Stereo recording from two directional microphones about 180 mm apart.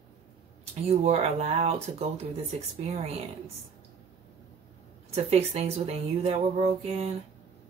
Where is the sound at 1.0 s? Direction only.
35° right (ahead or behind).